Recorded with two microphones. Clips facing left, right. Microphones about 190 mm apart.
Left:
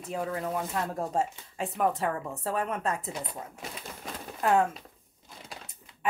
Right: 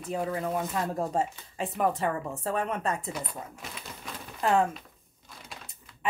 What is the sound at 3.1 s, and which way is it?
Speech, 30° left (ahead or behind).